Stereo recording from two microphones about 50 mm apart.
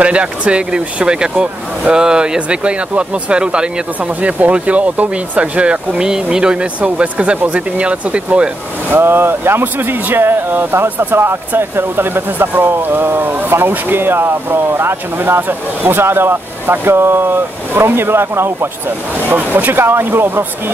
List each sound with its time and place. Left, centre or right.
0.0 s speech: right
8.9 s speech: right
19.2 s speech: right